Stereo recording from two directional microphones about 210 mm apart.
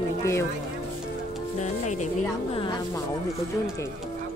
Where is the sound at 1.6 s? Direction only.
35° left (ahead or behind).